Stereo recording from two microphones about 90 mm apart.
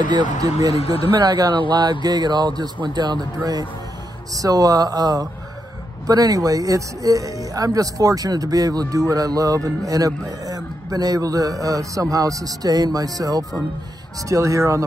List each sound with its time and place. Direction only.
0.0 s speech: 55° right (ahead or behind)
0.8 s speech: 90° left
1.1 s speech: 50° right (ahead or behind)